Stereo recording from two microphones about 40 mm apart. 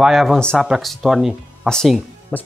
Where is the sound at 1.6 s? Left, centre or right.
Centre.